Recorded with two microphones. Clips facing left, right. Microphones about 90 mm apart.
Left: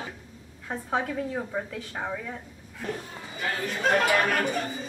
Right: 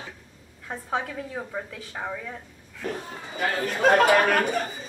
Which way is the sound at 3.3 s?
50° right (ahead or behind).